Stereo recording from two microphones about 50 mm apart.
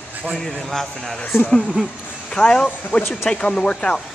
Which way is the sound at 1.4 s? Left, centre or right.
Left.